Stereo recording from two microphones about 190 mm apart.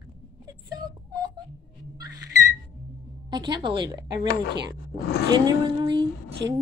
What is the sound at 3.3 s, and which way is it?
Speech, 20° right (ahead or behind).